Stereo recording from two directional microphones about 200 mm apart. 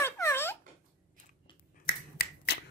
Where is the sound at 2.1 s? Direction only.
55° left (ahead or behind).